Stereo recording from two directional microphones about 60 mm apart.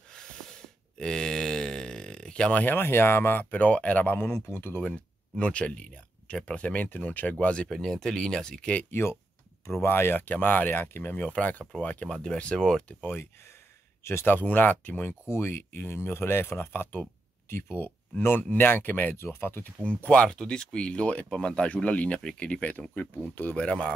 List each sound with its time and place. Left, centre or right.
0.1 s a sound: centre
2.6 s speech: left
3.4 s speech: left
4.3 s speech: left
5.4 s speech: centre
9.7 s speech: left
11.1 s speech: left
13.0 s speech: left
15.2 s speech: left
19.1 s speech: left
19.9 s speech: left